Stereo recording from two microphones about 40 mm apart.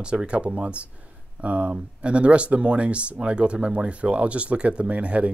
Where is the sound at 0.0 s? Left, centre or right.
Right.